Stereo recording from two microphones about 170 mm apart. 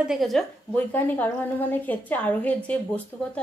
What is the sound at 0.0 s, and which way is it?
A woman's voice, centre (ahead or behind).